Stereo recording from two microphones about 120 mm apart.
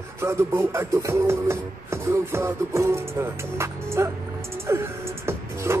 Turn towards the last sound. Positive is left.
turn(degrees=-20)  # may be behind; listen again after turning